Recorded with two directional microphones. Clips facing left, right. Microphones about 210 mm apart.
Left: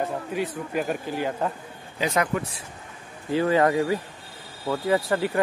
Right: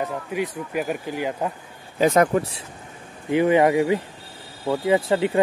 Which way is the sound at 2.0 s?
45° right (ahead or behind).